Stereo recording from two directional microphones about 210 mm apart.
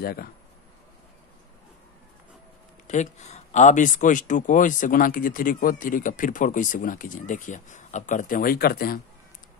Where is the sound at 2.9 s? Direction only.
35° left (ahead or behind).